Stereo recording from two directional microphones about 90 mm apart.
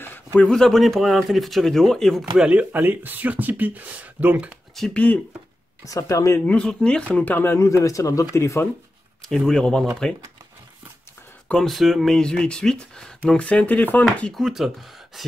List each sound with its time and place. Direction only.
0.4 s speech: 5° left (ahead or behind)
2.3 s speech: 10° right (ahead or behind)
2.7 s speech: 20° right (ahead or behind)
4.7 s speech: 5° left (ahead or behind)
5.9 s speech: 35° left (ahead or behind)
6.4 s speech: 10° left (ahead or behind); by 8.6 s 30° left (ahead or behind)
9.3 s speech: 5° left (ahead or behind)
11.5 s speech: centre (ahead or behind); by 14.0 s 15° left (ahead or behind)
14.3 s speech: centre (ahead or behind)